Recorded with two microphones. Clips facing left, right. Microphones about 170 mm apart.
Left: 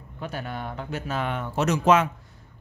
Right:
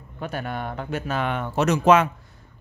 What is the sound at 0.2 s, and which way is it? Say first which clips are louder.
A man's voice: right 3 dB; 60° right (ahead or behind).